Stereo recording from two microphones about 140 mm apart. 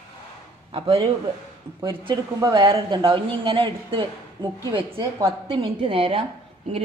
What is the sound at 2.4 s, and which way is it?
A woman's voice, 35° right (ahead or behind).